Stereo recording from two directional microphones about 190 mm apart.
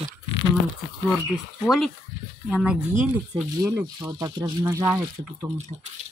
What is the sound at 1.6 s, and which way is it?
Speech, centre (ahead or behind).